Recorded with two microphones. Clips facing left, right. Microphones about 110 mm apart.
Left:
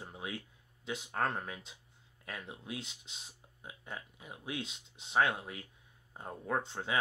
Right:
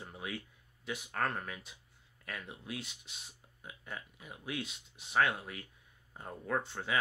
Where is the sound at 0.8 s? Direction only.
20° left (ahead or behind).